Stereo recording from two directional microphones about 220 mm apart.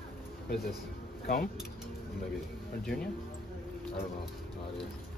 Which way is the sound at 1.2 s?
40° left (ahead or behind).